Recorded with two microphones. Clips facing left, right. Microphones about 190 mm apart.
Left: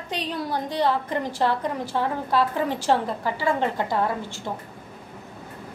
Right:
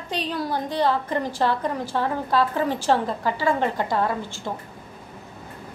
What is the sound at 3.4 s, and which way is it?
Speech, 15° right (ahead or behind).